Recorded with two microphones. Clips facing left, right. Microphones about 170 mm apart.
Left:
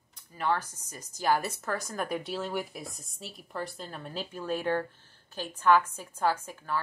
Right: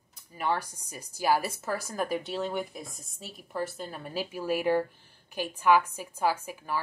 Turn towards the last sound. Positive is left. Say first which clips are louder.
# even
turn(degrees=-10)  # may be behind; listen again after turning